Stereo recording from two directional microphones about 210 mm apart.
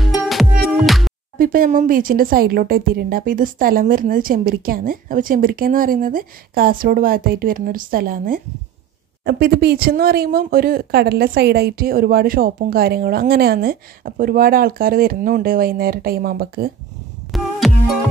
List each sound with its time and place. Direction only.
0.8 s music: centre (ahead or behind)
1.4 s speech: 40° right (ahead or behind)
17.3 s music: centre (ahead or behind)